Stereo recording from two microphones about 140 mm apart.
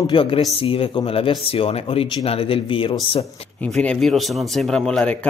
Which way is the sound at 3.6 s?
10° left (ahead or behind).